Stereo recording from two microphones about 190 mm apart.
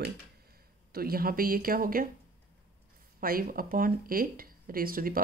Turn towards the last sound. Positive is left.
turn(degrees=-50)  # may be behind; listen again after turning